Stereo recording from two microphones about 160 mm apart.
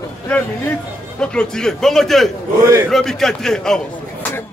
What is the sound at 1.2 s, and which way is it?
A man's voice, 5° left (ahead or behind).